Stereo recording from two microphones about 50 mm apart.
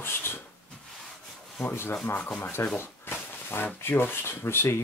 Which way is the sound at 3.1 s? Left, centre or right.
Left.